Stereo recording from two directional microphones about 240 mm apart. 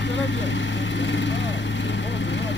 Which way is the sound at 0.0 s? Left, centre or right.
Left.